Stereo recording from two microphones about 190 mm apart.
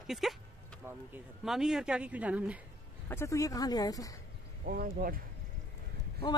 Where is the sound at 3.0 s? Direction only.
15° left (ahead or behind).